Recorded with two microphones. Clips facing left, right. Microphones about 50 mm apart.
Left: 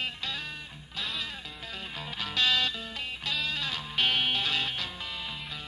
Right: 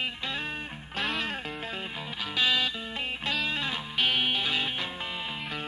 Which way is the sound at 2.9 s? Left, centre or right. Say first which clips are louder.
Right 3 dB; right.